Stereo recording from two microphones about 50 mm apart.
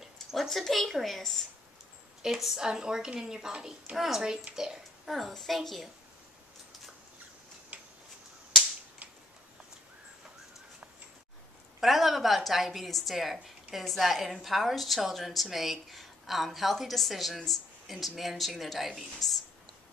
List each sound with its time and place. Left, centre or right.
0.0 s a woman's voice: centre
7.7 s tick-tock: right
11.8 s a woman's voice: centre